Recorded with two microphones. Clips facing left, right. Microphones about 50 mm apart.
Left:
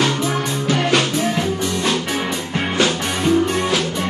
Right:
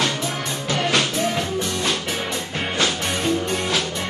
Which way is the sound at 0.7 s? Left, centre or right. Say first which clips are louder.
Left 3 dB; centre.